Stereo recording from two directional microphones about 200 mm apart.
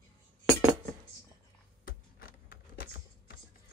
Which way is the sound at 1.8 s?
45° left (ahead or behind).